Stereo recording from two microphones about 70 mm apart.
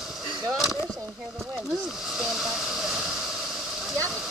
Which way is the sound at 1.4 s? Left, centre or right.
Centre.